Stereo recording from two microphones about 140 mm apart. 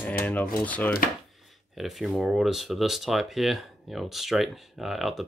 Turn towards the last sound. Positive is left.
turn(degrees=0)  # may be behind; listen again after turning